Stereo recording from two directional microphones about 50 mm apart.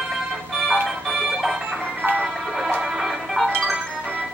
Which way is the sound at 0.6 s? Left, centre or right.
Centre.